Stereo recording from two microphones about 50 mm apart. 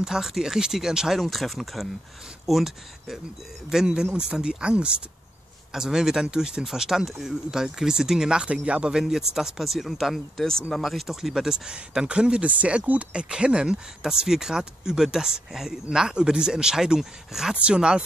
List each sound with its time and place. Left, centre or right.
0.0 s speech: centre
1.1 s speech: centre; by 5.0 s right
5.7 s speech: centre
8.9 s speech: centre
10.4 s speech: centre
10.8 s speech: centre
17.6 s speech: centre